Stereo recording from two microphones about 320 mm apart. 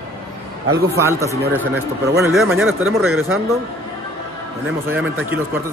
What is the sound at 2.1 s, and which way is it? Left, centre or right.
Speech, centre.